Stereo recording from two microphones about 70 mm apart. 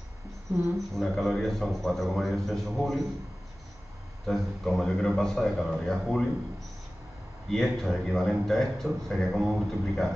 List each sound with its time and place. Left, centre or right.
0.9 s a man's voice: centre
4.3 s a man's voice: centre
7.4 s a man's voice: centre